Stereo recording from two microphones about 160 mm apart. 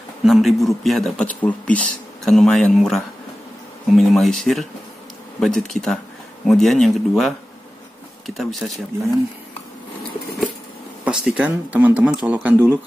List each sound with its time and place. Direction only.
0.2 s speech: centre (ahead or behind)
8.4 s speech: centre (ahead or behind)
11.1 s speech: 5° right (ahead or behind)